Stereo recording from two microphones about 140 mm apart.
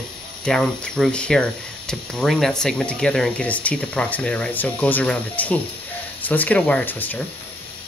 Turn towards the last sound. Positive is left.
turn(degrees=15)  # may be behind; listen again after turning